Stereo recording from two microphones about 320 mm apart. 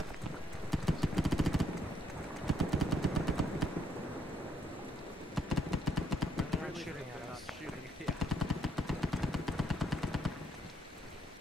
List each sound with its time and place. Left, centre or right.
0.7 s vehicle: centre
2.4 s machine gun: centre
5.3 s a sound: centre
8.0 s machine gun: centre